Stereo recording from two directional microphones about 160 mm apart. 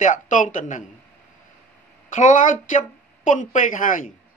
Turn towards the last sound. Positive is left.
turn(degrees=55)  # may be behind; listen again after turning